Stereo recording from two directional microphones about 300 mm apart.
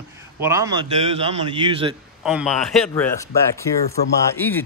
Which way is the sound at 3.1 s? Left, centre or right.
Centre.